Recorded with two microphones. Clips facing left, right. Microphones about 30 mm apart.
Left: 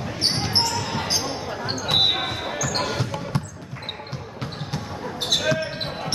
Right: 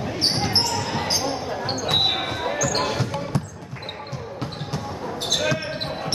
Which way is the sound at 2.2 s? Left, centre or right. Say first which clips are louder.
Right 2 dB; centre.